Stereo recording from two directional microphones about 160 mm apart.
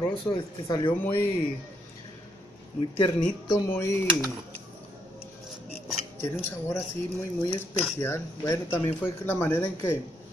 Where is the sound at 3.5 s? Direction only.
20° left (ahead or behind).